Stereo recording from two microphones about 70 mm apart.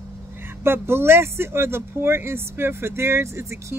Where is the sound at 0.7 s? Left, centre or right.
Right.